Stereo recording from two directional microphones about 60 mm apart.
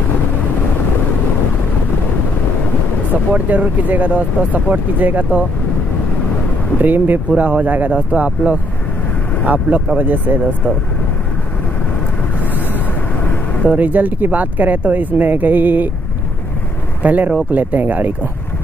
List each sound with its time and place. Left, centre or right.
3.1 s speech: right
6.8 s speech: right
12.5 s vehicle: left
13.7 s speech: right
17.0 s speech: right